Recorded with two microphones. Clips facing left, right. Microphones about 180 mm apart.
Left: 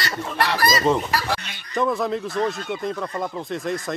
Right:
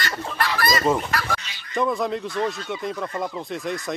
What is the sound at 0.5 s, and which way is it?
Fowl, 40° left (ahead or behind).